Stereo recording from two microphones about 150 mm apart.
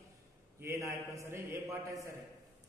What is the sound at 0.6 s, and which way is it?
A man's voice, 20° right (ahead or behind).